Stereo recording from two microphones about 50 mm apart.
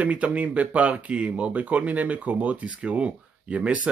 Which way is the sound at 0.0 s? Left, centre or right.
Right.